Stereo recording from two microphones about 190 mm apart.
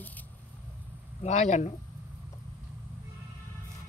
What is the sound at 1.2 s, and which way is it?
Speech, 35° left (ahead or behind).